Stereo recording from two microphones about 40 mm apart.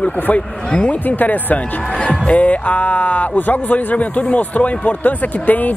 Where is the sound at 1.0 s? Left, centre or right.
Left.